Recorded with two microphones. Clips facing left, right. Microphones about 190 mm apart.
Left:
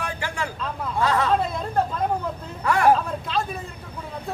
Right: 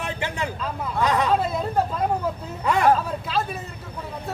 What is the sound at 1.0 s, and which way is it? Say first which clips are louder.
Hubbub: even; 15° right (ahead or behind).